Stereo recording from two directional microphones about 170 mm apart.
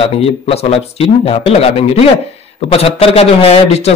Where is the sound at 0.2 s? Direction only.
35° left (ahead or behind).